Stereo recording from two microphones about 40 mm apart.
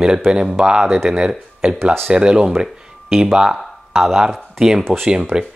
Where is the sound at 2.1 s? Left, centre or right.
Right.